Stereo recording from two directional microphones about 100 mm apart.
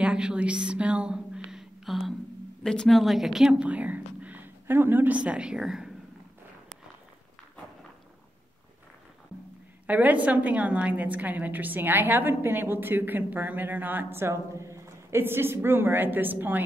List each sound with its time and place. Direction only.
0.0 s a woman's voice: 10° right (ahead or behind)
9.8 s a woman's voice: 15° right (ahead or behind)